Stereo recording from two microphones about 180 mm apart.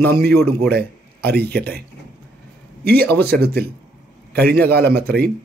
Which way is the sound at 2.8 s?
60° right (ahead or behind).